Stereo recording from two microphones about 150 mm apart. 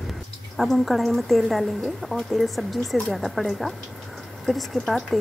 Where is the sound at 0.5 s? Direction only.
Centre (ahead or behind).